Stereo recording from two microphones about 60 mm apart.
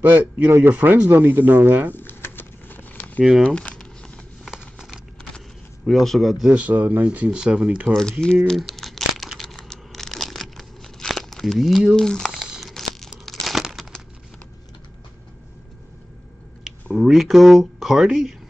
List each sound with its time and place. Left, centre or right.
0.0 s speech: right
2.0 s a sound: left
3.4 s a sound: centre
4.5 s a sound: centre
5.9 s speech: centre
6.4 s speech: right
7.2 s speech: centre
7.9 s speech: centre
8.4 s crumpling: centre
12.0 s speech: centre
12.5 s crumpling: centre
16.9 s speech: centre